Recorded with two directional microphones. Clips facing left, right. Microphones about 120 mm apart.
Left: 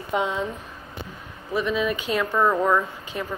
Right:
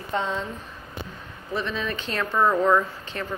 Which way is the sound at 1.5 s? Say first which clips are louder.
Left 5 dB; 10° left (ahead or behind).